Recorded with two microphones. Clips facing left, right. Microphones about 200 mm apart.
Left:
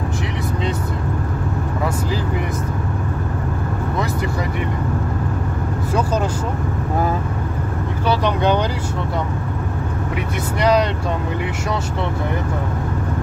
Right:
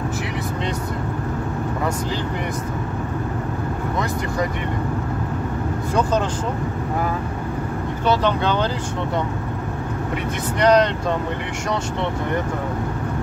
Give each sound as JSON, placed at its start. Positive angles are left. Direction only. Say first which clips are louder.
{"t": 8.1, "sound": "speech", "louder": "left 2 dB", "side_deg": 15}
{"t": 10.6, "sound": "speech", "louder": "right 1 dB", "side_deg": 5}